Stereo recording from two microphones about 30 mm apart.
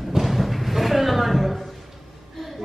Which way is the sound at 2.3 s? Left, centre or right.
Centre.